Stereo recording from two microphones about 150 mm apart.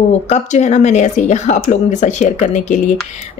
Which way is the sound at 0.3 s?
50° left (ahead or behind).